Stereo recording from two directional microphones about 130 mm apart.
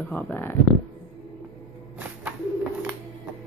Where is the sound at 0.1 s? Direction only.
15° left (ahead or behind).